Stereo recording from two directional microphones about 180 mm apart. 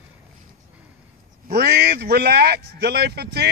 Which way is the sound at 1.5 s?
60° right (ahead or behind).